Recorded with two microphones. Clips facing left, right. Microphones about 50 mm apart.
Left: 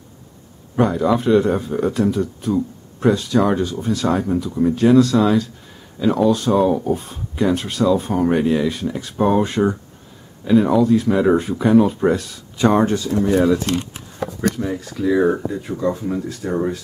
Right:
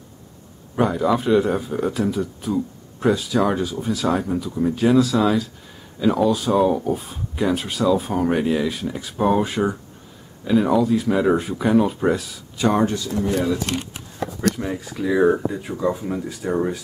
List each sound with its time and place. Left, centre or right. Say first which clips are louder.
0.7 s speech: left 2 dB; centre
13.1 s speech: left 4 dB; left
13.7 s speech: left 4 dB; centre